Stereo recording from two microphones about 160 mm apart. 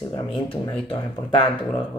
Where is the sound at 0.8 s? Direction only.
30° left (ahead or behind).